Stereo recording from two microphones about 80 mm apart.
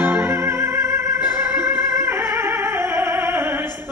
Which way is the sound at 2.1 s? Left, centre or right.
Right.